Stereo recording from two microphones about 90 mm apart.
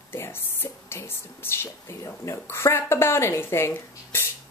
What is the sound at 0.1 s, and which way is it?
A woman's voice, 25° left (ahead or behind).